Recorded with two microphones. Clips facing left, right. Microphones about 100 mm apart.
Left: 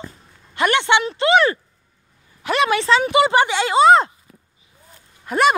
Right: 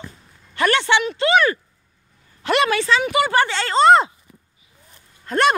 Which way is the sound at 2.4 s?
5° left (ahead or behind).